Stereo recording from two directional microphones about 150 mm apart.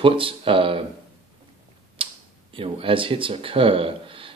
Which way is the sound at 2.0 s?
35° right (ahead or behind).